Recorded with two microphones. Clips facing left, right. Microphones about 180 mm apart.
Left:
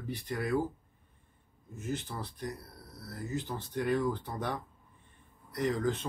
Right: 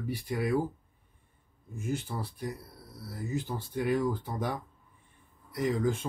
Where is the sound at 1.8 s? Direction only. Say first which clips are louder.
Right 3 dB; 10° right (ahead or behind).